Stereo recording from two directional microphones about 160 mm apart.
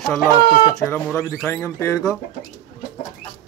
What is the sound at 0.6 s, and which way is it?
Speech, 20° left (ahead or behind).